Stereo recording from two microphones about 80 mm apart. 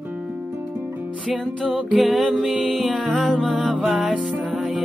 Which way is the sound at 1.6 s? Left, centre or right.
Centre.